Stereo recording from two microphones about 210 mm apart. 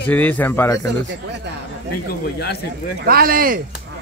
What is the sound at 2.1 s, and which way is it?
Speech, 50° left (ahead or behind).